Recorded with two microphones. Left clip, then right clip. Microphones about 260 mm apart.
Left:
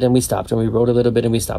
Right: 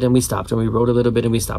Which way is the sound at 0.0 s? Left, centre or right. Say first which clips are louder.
Left 2 dB; centre.